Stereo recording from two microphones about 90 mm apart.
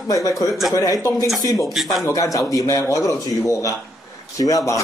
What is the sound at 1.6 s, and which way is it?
Speech, centre (ahead or behind).